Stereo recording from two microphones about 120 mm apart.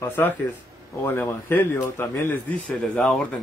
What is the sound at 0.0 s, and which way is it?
Speech, 15° left (ahead or behind).